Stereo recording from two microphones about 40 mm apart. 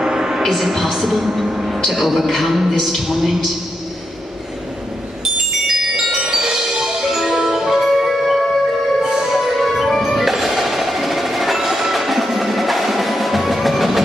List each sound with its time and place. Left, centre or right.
0.0 s music: centre
0.4 s a man's voice: centre
5.2 s marimba: centre
9.0 s music: centre
10.0 s percussion: centre